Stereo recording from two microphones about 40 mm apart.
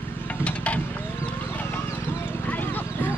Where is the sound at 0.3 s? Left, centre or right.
Left.